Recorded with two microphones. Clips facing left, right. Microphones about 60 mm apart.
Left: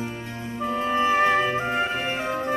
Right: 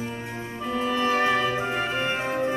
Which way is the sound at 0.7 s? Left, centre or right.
Left.